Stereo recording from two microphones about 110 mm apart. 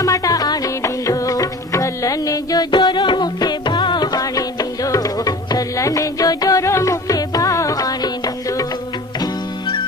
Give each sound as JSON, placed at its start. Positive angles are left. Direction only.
{"t": 0.0, "sound": "music", "side_deg": 35}